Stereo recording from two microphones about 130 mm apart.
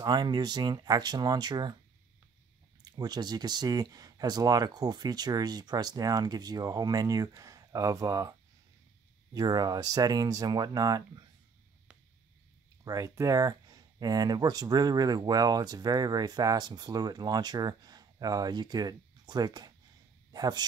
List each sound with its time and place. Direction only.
0.0 s speech: 30° right (ahead or behind)
2.8 s speech: 30° right (ahead or behind)
12.8 s speech: 25° right (ahead or behind)